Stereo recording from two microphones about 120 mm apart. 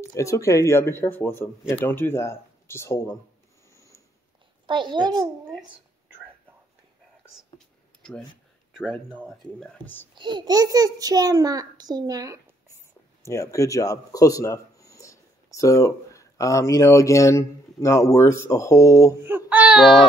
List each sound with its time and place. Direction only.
0.1 s speech: 25° left (ahead or behind)
3.7 s a sound: 25° left (ahead or behind)
4.6 s a child's voice: 40° right (ahead or behind)
7.2 s a sound: 5° left (ahead or behind)
8.7 s speech: 5° left (ahead or behind)
10.1 s a child's voice: 40° right (ahead or behind)
13.2 s a man's voice: 25° left (ahead or behind)
19.2 s speech: 15° right (ahead or behind)